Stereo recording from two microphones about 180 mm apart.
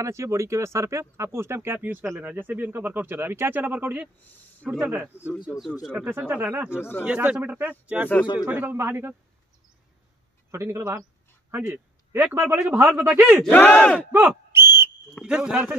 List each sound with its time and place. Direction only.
0.0 s speech: 15° right (ahead or behind)
4.2 s speech: 10° left (ahead or behind)
4.6 s speech: 10° right (ahead or behind)
10.5 s a man's voice: 15° right (ahead or behind)
13.4 s speech: 10° left (ahead or behind)
14.1 s a sound: 15° right (ahead or behind)
15.2 s a man's voice: 5° right (ahead or behind)